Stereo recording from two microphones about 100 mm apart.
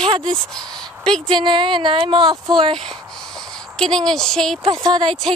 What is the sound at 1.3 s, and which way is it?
Speech, 50° right (ahead or behind).